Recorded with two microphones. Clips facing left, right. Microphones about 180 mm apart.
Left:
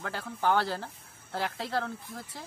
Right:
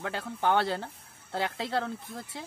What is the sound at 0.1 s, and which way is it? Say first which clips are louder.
Speech: even; 20° right (ahead or behind).